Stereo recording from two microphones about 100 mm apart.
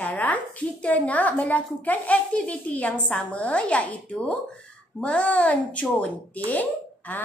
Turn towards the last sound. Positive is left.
turn(degrees=15)  # may be behind; listen again after turning